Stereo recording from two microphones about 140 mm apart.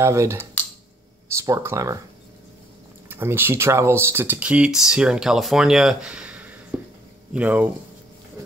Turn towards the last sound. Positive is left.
turn(degrees=-10)  # may be behind; listen again after turning